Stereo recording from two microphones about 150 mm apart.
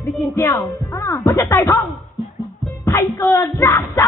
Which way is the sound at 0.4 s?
15° left (ahead or behind).